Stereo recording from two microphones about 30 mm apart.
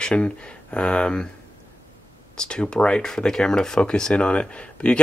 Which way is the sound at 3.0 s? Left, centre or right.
Left.